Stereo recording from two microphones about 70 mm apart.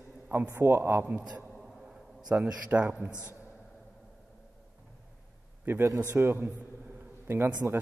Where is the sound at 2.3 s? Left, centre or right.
Centre.